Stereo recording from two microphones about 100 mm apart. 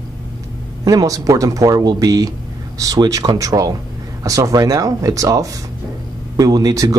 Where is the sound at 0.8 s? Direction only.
40° right (ahead or behind).